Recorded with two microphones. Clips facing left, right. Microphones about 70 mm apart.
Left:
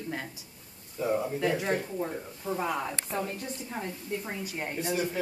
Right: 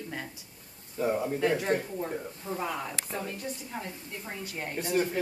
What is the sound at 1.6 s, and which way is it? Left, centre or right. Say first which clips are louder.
A woman's voice: right 1 dB; centre.